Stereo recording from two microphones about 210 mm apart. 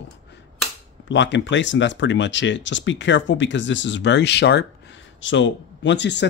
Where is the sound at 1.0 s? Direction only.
60° left (ahead or behind).